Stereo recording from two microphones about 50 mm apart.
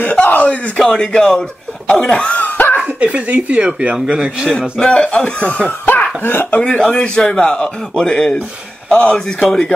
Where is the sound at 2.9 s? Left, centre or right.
Right.